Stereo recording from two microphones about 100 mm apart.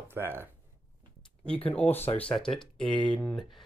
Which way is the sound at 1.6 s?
15° left (ahead or behind).